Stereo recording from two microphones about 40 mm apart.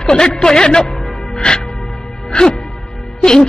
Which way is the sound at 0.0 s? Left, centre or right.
Centre.